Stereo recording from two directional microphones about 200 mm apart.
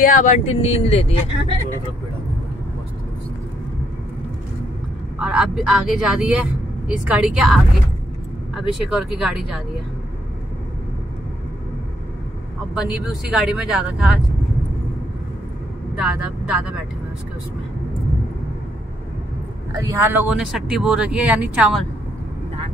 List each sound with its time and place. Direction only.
0.0 s speech: 40° left (ahead or behind)
5.2 s speech: 5° right (ahead or behind)
12.7 s speech: centre (ahead or behind)
16.0 s speech: 5° right (ahead or behind)
19.8 s speech: 15° right (ahead or behind)